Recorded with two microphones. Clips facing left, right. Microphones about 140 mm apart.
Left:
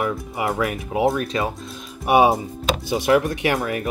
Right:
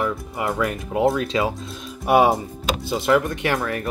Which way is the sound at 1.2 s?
20° right (ahead or behind).